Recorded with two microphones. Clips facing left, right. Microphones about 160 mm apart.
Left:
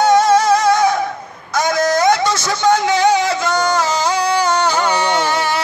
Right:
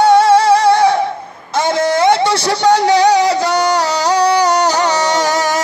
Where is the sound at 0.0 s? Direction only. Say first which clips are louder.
Right 3 dB; 30° right (ahead or behind).